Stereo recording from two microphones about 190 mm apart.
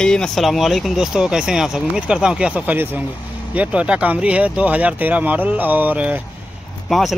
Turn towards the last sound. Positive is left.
turn(degrees=0)  # may be behind; listen again after turning